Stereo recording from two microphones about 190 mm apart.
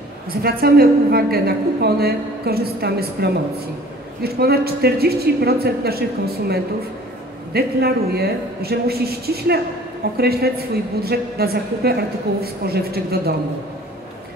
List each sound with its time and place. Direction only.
0.4 s a woman's voice: 50° right (ahead or behind)